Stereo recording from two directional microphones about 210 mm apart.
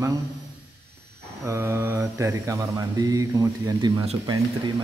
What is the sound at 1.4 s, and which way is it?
Mantra, 10° right (ahead or behind).